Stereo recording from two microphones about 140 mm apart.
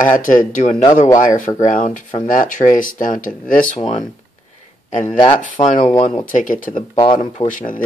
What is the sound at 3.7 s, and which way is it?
Speech, 55° left (ahead or behind).